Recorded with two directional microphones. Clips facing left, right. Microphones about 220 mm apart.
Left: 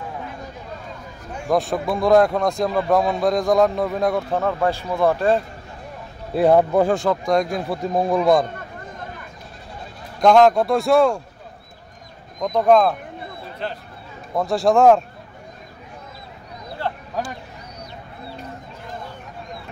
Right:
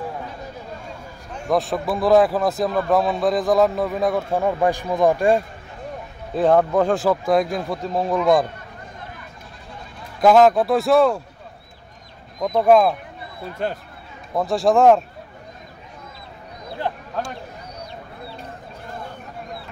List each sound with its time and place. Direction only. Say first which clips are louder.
1.3 s a man's voice: left 1 dB; 5° left (ahead or behind); by 5.4 s 15° right (ahead or behind)
6.3 s speech: left 1 dB; 10° left (ahead or behind)
7.0 s a man's voice: right 1 dB; 5° right (ahead or behind)
7.8 s speech: left 3 dB; 15° left (ahead or behind)
10.2 s a man's voice: even; 5° right (ahead or behind)
12.4 s speech: right 1 dB; 5° right (ahead or behind)
13.6 s speech: right 4 dB; 50° right (ahead or behind)
14.3 s a man's voice: even; centre (ahead or behind)